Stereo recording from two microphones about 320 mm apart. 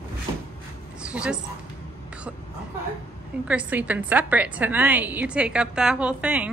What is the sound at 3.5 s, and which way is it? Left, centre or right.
A woman's voice, centre.